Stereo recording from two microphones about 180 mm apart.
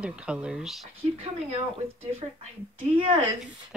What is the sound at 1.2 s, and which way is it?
A woman's voice, 30° right (ahead or behind).